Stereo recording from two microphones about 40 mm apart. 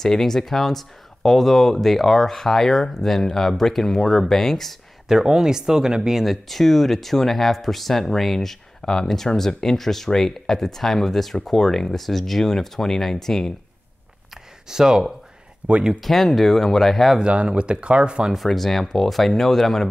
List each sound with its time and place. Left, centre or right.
0.0 s speech: centre
5.0 s speech: centre
6.2 s speech: centre
14.3 s a sound: centre
15.9 s speech: centre
17.2 s speech: right
18.3 s speech: centre